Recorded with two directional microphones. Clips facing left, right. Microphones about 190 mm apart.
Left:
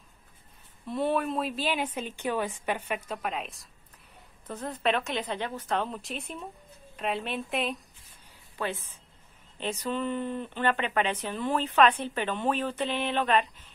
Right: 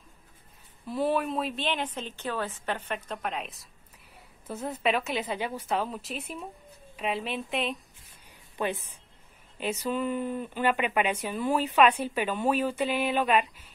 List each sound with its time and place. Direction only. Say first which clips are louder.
0.8 s a woman's voice: even; centre (ahead or behind)
8.5 s speech: right 2 dB; 15° right (ahead or behind)